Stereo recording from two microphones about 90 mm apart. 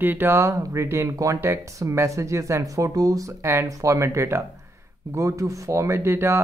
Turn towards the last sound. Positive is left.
turn(degrees=-30)  # may be behind; listen again after turning